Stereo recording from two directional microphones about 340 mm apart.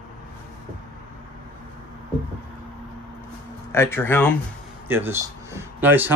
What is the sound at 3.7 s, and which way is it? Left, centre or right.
Speech, centre.